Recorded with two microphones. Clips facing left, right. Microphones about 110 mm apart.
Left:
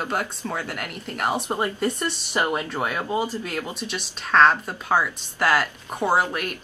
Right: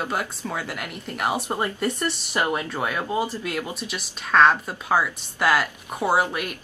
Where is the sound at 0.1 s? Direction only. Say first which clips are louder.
Left 1 dB; 5° right (ahead or behind).